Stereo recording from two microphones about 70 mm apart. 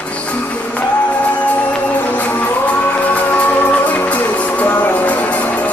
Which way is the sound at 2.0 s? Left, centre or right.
Left.